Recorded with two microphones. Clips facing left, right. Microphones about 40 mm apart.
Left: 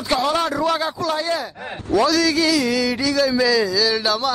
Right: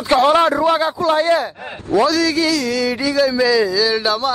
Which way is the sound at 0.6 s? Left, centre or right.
Centre.